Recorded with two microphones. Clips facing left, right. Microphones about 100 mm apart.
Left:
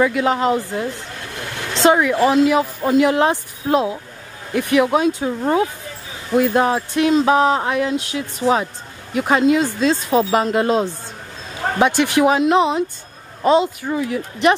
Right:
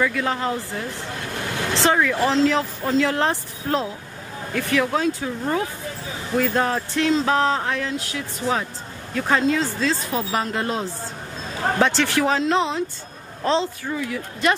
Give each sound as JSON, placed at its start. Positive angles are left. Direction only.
{"t": 0.0, "sound": "speech", "side_deg": 20}
{"t": 6.3, "sound": "speech", "side_deg": 15}
{"t": 13.9, "sound": "speech", "side_deg": 30}